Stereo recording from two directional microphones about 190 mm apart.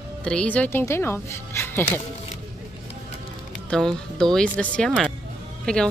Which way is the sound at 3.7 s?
5° left (ahead or behind).